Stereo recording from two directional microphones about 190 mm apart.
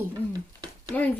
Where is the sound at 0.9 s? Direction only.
10° left (ahead or behind).